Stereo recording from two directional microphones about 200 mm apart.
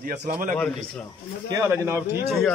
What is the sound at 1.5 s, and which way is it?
Speech, 15° right (ahead or behind).